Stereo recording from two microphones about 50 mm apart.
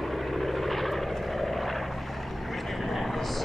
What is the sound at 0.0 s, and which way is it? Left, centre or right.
Vehicle, centre.